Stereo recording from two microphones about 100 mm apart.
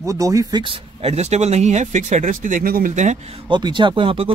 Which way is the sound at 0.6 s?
75° right (ahead or behind).